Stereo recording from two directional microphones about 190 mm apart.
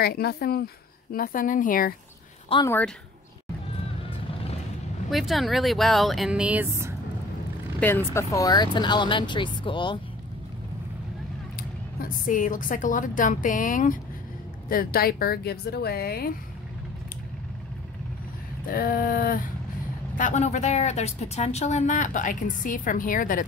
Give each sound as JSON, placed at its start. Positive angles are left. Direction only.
{"t": 0.0, "sound": "a woman's voice", "side_deg": 55}
{"t": 2.5, "sound": "speech", "side_deg": 30}
{"t": 5.1, "sound": "speech", "side_deg": 0}
{"t": 7.8, "sound": "speech", "side_deg": 15}
{"t": 12.0, "sound": "a woman's voice", "side_deg": 45}
{"t": 18.7, "sound": "a woman's voice", "side_deg": 45}
{"t": 20.2, "sound": "a woman's voice", "side_deg": 40}